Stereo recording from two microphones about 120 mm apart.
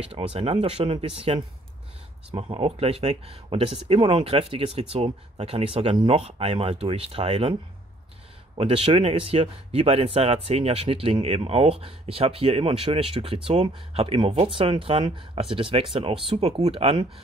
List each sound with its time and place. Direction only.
0.1 s speech: 55° right (ahead or behind)
8.5 s speech: 60° right (ahead or behind)